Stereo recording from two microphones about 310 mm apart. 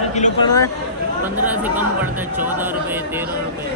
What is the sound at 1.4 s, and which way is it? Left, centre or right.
Speech, centre.